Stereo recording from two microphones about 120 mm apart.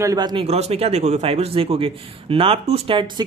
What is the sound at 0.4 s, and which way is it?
A man's voice, 60° right (ahead or behind).